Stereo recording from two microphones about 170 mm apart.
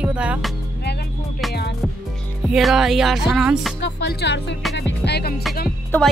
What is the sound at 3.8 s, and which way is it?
Music, 90° left.